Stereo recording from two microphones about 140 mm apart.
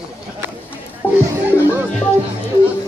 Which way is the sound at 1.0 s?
15° left (ahead or behind).